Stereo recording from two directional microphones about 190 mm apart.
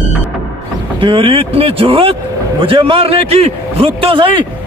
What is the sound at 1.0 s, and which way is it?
A man's voice, 30° right (ahead or behind).